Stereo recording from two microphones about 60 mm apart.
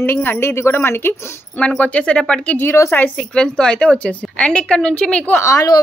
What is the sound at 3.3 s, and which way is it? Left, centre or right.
A woman's voice, centre.